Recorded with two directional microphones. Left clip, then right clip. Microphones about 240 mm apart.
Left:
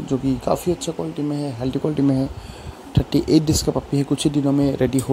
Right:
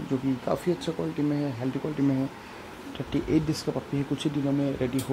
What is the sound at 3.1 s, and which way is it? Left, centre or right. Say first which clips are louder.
Speech: left 9 dB; left.